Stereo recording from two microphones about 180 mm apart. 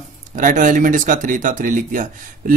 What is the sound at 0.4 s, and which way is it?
A man's voice, 45° right (ahead or behind).